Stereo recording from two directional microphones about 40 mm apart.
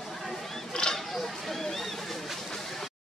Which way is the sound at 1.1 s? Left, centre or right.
Centre.